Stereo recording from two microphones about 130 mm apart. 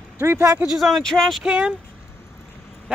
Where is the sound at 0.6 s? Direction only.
Centre (ahead or behind).